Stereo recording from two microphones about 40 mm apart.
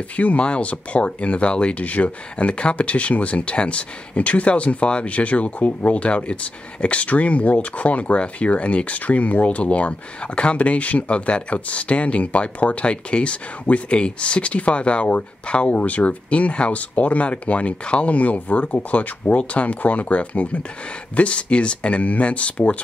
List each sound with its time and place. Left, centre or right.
0.1 s speech: left
1.9 s speech: left